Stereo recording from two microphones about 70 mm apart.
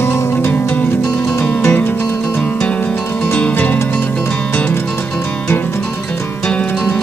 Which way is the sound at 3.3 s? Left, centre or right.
Centre.